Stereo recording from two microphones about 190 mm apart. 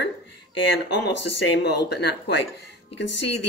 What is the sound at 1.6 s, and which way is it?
Speech, 60° left (ahead or behind).